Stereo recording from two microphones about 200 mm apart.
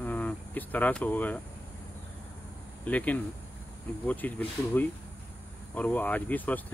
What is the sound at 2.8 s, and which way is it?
Speech, 5° left (ahead or behind).